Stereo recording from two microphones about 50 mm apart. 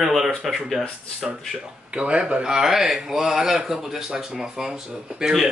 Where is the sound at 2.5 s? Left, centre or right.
Centre.